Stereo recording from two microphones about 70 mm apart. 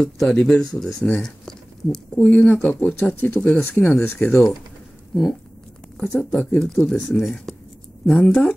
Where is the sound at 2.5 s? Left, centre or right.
Left.